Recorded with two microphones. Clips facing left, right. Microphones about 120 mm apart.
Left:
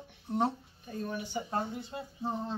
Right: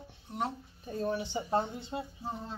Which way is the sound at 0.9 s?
30° right (ahead or behind).